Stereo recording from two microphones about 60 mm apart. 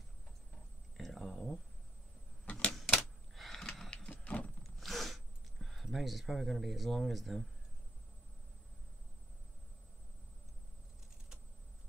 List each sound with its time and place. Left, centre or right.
0.9 s a sound: centre
2.4 s typewriter: left
2.7 s typewriter: centre
4.1 s vehicle: left
4.7 s zipper: centre